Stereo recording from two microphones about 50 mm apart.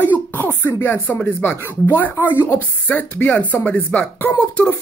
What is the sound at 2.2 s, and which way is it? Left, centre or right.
Speech, left.